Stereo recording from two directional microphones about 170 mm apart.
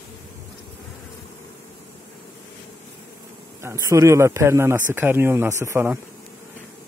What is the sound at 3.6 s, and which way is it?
Speech, 20° right (ahead or behind).